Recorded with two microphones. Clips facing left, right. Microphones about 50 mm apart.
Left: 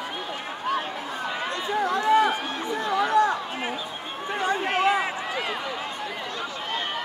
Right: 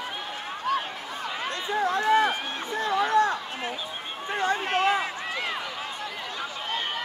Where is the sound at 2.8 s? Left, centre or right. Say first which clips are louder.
Left 1 dB; left.